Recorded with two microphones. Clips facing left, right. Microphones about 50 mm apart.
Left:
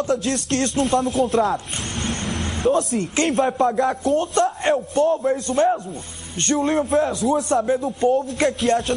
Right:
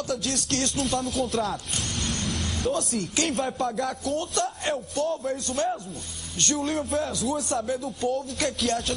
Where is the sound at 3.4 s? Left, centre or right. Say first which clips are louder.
Left 8 dB; left.